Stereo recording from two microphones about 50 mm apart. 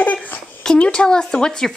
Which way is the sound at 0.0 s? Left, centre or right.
Left.